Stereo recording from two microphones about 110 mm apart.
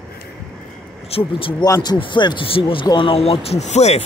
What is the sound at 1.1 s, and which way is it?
Speech, 55° left (ahead or behind).